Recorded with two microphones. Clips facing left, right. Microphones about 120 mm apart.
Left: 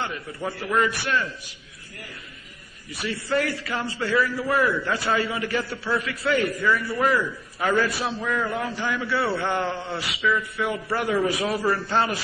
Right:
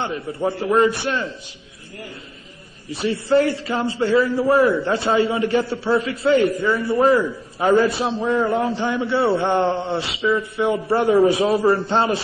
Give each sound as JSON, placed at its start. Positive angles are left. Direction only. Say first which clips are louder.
{"t": 0.0, "sound": "a man's voice", "louder": "right 7 dB", "side_deg": -25}
{"t": 2.9, "sound": "a man's voice", "louder": "right 8 dB", "side_deg": -25}